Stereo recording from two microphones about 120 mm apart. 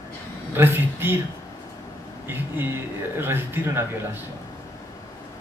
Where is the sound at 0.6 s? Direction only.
20° right (ahead or behind).